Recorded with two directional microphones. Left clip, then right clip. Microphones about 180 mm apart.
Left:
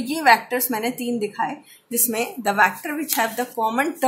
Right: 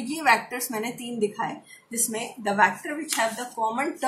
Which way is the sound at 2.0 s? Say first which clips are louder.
Left 6 dB; 60° left (ahead or behind).